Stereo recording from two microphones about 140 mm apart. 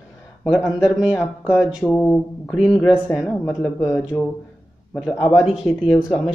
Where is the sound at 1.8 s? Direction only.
5° left (ahead or behind).